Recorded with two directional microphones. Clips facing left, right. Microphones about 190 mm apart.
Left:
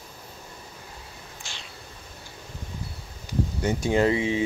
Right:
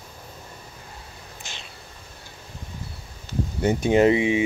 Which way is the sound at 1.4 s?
20° right (ahead or behind).